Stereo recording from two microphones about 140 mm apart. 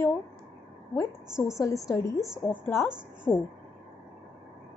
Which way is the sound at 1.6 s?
25° left (ahead or behind).